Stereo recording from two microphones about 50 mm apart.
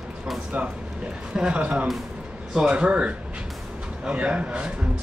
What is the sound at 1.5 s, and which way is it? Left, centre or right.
Speech, right.